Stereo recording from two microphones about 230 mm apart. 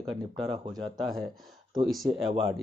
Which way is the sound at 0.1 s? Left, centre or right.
Centre.